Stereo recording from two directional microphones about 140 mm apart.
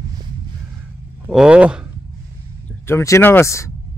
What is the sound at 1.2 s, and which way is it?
Speech, 5° right (ahead or behind).